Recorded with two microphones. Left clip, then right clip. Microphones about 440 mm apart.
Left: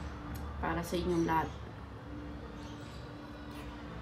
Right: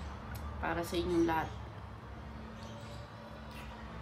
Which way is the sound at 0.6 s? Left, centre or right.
Centre.